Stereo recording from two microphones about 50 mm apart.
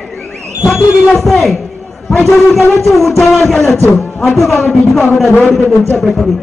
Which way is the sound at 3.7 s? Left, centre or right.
Left.